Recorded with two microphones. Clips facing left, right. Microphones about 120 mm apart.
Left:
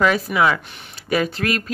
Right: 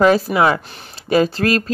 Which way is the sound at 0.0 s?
30° right (ahead or behind).